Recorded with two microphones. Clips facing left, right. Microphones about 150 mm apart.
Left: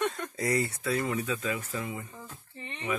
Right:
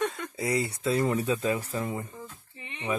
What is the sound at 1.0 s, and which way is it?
Speech, 40° right (ahead or behind).